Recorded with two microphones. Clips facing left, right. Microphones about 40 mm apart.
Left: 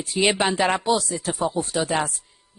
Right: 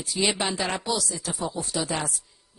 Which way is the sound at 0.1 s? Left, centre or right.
Left.